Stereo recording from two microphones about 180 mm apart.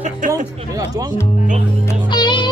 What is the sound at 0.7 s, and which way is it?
Speech, 20° right (ahead or behind).